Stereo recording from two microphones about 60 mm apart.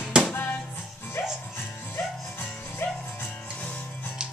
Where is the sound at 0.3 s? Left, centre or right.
Left.